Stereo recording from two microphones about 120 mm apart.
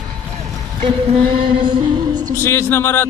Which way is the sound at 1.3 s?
50° right (ahead or behind).